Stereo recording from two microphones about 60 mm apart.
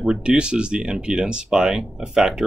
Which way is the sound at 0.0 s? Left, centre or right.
Centre.